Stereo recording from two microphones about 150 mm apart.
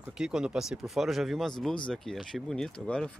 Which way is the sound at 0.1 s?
5° right (ahead or behind).